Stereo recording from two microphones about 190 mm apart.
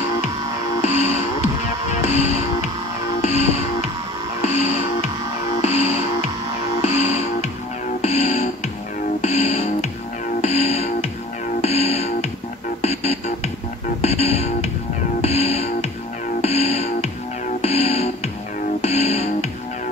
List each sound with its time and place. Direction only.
0.8 s music: 35° left (ahead or behind)